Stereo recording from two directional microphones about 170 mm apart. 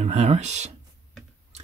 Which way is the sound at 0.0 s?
40° right (ahead or behind).